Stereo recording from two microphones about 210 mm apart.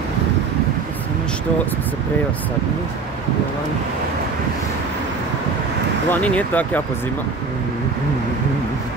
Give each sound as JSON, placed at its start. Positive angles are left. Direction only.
{"t": 6.0, "sound": "speech", "side_deg": 5}